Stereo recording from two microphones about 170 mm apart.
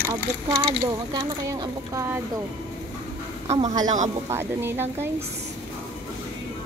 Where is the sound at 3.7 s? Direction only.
25° right (ahead or behind).